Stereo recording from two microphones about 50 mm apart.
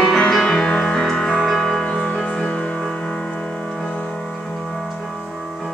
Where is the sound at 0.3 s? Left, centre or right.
Centre.